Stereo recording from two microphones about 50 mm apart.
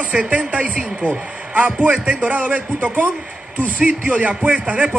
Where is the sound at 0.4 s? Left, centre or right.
Right.